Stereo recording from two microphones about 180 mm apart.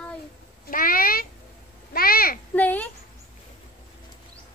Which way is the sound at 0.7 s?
50° left (ahead or behind).